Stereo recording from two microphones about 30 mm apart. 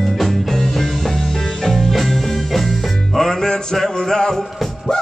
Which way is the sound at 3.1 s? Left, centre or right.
Centre.